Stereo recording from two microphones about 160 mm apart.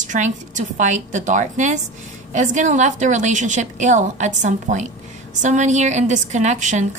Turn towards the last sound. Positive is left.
turn(degrees=-50)  # may be behind; listen again after turning